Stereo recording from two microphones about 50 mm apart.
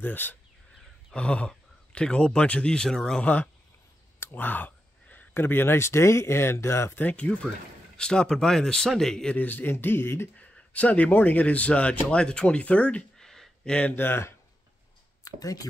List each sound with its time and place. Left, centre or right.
0.0 s speech: left
1.1 s speech: left
4.2 s a sound: left
5.3 s speech: left
7.0 s speech: left
8.0 s speech: centre
9.3 s speech: left
10.3 s a sound: left
11.1 s speech: left
13.2 s a sound: centre
13.8 s speech: left